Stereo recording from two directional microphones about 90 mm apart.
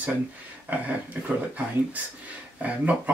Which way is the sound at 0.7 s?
20° right (ahead or behind).